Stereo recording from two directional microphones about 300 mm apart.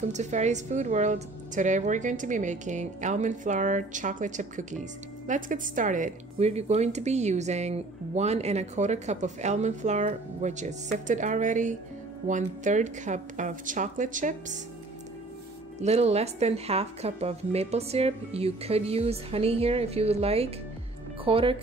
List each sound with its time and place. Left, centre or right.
0.1 s a woman's voice: right
15.8 s a woman's voice: right